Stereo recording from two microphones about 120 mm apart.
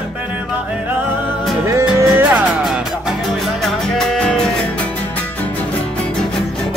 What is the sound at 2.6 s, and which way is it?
Music, 5° right (ahead or behind).